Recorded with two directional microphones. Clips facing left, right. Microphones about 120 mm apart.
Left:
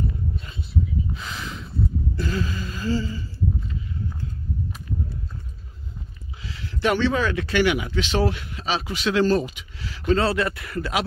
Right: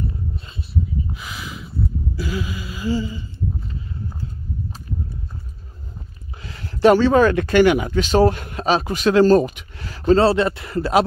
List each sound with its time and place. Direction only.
1.1 s a sound: 10° right (ahead or behind)
2.1 s gasp: 10° right (ahead or behind)
6.4 s speech: 45° right (ahead or behind)